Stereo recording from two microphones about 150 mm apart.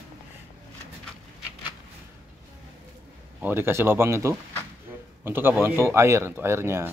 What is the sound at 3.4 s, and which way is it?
Speech, 15° right (ahead or behind).